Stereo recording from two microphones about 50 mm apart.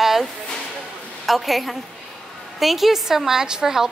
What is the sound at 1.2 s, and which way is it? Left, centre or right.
A woman's voice, centre.